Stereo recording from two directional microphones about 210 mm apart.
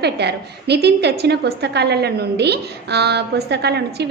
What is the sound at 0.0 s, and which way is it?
A woman's voice, 50° right (ahead or behind).